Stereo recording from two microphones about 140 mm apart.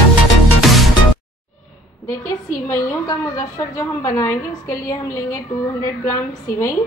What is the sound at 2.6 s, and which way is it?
A woman's voice, 20° left (ahead or behind).